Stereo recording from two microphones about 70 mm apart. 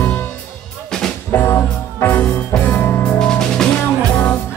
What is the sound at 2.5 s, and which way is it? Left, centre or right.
Music, centre.